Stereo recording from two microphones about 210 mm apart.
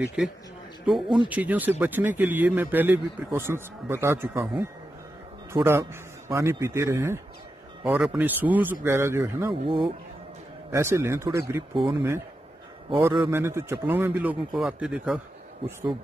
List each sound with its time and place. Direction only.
0.2 s a man's voice: 5° right (ahead or behind)
9.7 s speech: 25° right (ahead or behind)
10.7 s a man's voice: 15° right (ahead or behind)
13.1 s a man's voice: 15° right (ahead or behind)